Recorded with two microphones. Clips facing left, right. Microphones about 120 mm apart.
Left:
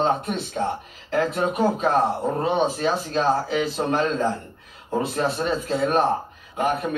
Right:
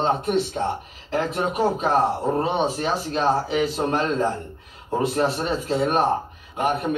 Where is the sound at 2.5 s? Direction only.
15° right (ahead or behind).